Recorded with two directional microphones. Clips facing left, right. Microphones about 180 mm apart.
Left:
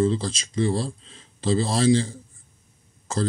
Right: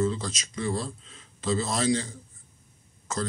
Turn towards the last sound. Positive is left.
turn(degrees=30)  # may be behind; listen again after turning